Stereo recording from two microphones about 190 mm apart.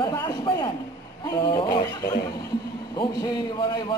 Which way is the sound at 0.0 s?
20° left (ahead or behind).